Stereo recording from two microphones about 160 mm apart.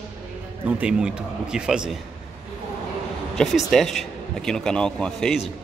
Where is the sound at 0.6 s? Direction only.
10° right (ahead or behind).